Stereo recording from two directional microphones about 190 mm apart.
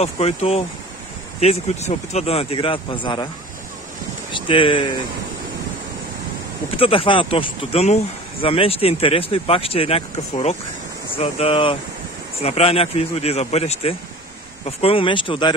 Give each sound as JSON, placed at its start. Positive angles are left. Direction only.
{"t": 0.0, "sound": "speech", "side_deg": 35}
{"t": 4.3, "sound": "speech", "side_deg": 25}
{"t": 6.8, "sound": "speech", "side_deg": 30}